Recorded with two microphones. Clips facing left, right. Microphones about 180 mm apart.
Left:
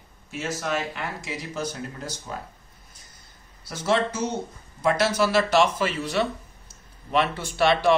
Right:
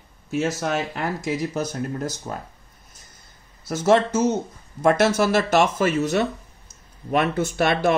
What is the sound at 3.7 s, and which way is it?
Speech, 45° right (ahead or behind).